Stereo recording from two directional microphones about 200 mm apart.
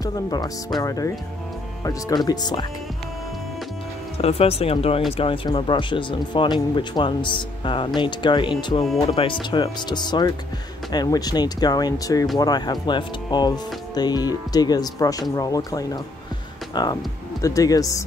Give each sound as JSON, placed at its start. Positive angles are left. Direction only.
{"t": 0.0, "sound": "speech", "side_deg": 20}
{"t": 4.2, "sound": "speech", "side_deg": 30}